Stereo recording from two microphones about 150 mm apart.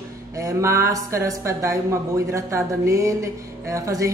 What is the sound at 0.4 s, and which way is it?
Speech, 20° right (ahead or behind).